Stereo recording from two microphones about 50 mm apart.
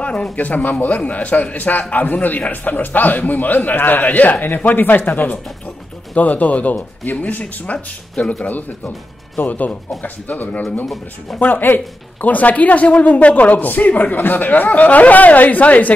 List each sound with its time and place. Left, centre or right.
0.0 s a man's voice: left
11.3 s speech: centre
11.6 s a man's voice: left